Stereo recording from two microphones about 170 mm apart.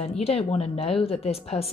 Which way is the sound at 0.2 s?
35° left (ahead or behind).